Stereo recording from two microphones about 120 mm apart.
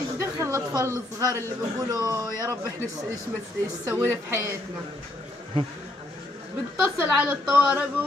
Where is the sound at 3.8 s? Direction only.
20° right (ahead or behind).